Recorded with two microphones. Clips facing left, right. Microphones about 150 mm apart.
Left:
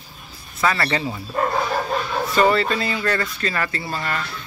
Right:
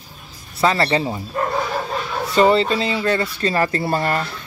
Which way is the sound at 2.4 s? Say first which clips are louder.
Right 4 dB; 25° right (ahead or behind).